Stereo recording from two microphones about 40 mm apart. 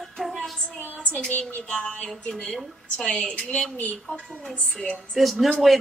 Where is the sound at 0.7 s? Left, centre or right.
Left.